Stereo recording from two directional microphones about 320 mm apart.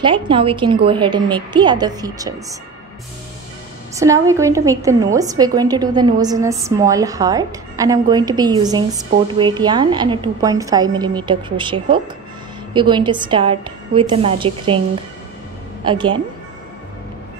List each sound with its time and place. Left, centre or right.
0.0 s a woman's voice: centre
3.9 s a woman's voice: centre
15.8 s a woman's voice: centre